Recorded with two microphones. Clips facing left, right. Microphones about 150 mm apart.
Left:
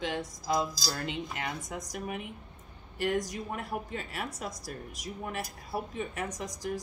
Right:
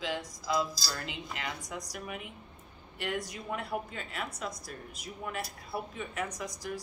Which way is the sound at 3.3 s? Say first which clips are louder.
Even; 40° left (ahead or behind).